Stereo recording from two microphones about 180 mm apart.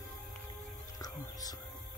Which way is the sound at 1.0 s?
20° left (ahead or behind).